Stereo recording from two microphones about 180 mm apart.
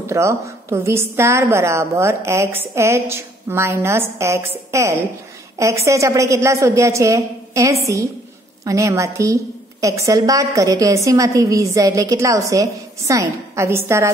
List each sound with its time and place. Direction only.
0.0 s a woman's voice: 15° right (ahead or behind)